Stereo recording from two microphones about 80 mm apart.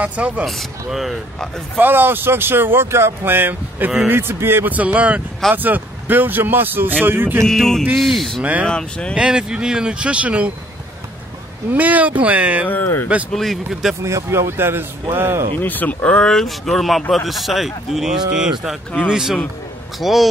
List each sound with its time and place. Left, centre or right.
0.0 s speech: centre
0.8 s speech: centre
1.8 s speech: right
7.4 s speech: centre
8.4 s speech: centre
8.6 s speech: centre
9.1 s speech: centre
11.7 s speech: centre
12.6 s speech: left
13.3 s speech: centre
14.0 s a man's voice: right
15.6 s speech: left; by 20.2 s centre